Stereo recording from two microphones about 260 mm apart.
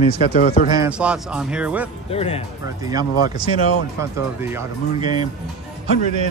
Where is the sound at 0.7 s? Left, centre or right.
Centre.